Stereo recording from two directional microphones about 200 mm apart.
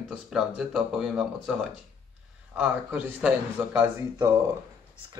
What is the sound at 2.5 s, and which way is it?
A man's voice, 5° right (ahead or behind).